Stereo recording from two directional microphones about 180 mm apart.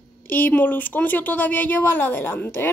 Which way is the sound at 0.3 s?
10° left (ahead or behind).